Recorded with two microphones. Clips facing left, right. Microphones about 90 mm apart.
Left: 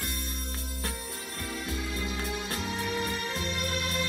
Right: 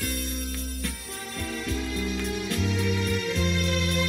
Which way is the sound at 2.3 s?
30° left (ahead or behind).